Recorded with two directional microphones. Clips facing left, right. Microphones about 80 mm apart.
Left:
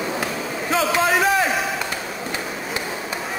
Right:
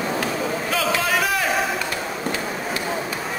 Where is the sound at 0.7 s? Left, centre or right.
Left.